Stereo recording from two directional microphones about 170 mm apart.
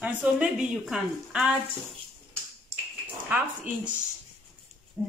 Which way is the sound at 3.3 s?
10° right (ahead or behind).